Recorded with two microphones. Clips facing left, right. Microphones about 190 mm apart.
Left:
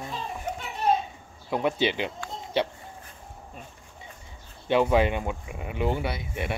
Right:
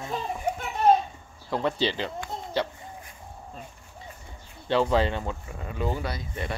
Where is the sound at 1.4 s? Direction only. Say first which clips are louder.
Left 1 dB; 15° left (ahead or behind).